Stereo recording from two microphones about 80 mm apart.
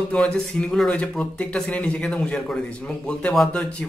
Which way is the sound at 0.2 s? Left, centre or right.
Centre.